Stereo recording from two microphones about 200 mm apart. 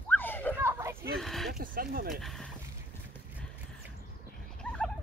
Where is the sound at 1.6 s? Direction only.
45° right (ahead or behind).